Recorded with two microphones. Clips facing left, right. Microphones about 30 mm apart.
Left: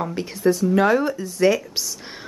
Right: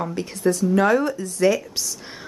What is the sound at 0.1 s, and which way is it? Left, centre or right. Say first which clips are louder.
A woman's voice: left 2 dB; centre.